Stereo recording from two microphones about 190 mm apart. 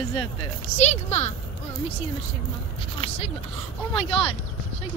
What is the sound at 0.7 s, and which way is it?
Speech, 35° left (ahead or behind).